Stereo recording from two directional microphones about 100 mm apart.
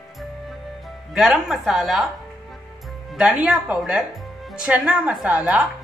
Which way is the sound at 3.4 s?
5° right (ahead or behind).